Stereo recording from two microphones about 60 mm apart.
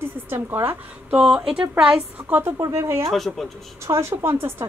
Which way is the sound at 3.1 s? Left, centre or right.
Centre.